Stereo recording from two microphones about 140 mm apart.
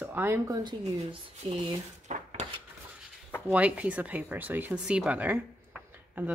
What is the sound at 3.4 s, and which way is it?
A woman's voice, 10° right (ahead or behind).